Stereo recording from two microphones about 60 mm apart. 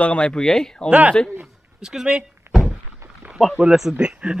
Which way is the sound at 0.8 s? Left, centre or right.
Right.